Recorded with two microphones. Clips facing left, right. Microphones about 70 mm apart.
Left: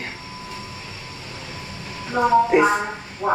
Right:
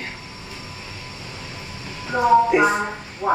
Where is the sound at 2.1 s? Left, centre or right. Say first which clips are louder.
Even; centre.